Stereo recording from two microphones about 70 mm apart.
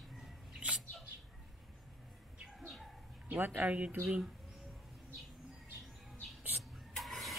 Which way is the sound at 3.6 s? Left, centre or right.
Right.